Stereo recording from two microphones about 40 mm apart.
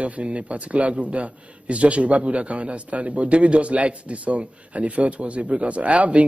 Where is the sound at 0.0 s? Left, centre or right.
Right.